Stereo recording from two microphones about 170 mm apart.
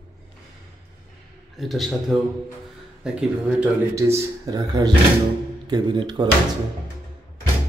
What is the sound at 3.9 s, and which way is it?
Speech, 20° right (ahead or behind).